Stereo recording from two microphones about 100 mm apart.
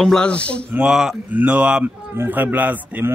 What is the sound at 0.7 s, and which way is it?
A man's voice, 5° right (ahead or behind).